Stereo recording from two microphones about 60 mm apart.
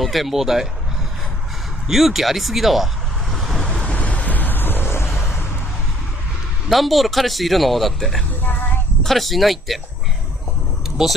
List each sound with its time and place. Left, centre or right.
0.0 s speech: centre
1.9 s speech: centre
3.8 s vehicle: left
6.7 s speech: centre
11.0 s speech: centre